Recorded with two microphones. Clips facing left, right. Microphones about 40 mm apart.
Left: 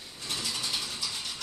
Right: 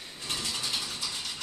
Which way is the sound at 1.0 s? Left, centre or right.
Centre.